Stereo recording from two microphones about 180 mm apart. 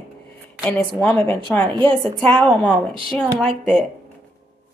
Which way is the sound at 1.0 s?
10° left (ahead or behind).